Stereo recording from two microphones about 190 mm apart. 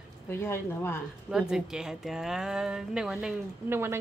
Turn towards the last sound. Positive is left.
turn(degrees=-10)  # may be behind; listen again after turning